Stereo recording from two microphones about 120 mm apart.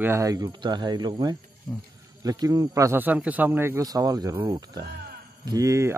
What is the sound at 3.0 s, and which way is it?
Speech, 15° right (ahead or behind).